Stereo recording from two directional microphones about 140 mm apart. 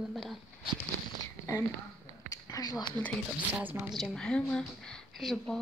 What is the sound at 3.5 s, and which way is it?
A woman's voice, 5° right (ahead or behind).